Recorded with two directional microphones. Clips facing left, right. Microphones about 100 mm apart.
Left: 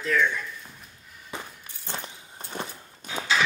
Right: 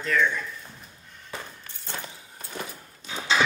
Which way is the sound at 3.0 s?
50° left (ahead or behind).